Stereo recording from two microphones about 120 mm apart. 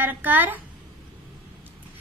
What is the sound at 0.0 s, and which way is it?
Speech, 15° right (ahead or behind).